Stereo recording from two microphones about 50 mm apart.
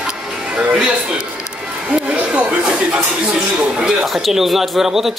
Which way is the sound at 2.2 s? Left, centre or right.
Right.